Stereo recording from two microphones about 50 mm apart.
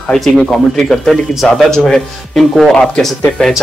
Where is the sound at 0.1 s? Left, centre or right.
Centre.